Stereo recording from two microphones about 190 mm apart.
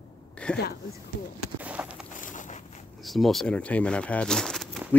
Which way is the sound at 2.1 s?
40° left (ahead or behind).